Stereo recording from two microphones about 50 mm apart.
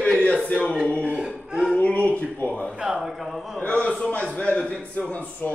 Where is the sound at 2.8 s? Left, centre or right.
Centre.